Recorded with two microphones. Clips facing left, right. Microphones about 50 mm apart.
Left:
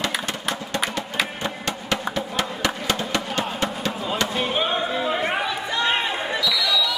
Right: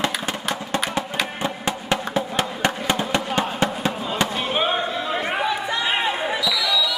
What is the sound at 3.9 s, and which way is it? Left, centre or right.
Fireworks, centre.